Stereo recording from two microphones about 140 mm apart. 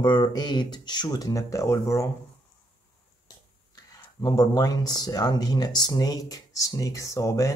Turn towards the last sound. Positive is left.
turn(degrees=25)  # may be behind; listen again after turning